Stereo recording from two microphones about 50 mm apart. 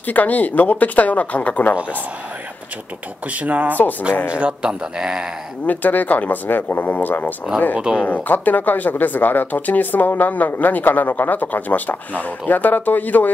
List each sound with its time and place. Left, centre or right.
0.0 s speech: left
3.3 s a man's voice: right; by 5.3 s centre
5.7 s speech: left